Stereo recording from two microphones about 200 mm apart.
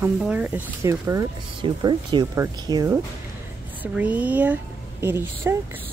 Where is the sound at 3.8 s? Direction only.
5° right (ahead or behind).